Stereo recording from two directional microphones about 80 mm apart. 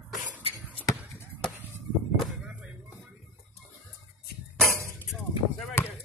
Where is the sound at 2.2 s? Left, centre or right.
Centre.